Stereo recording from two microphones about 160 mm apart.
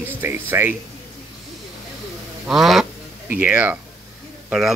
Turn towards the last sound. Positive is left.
turn(degrees=0)  # may be behind; listen again after turning